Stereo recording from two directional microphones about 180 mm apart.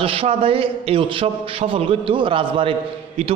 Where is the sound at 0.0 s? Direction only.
30° right (ahead or behind).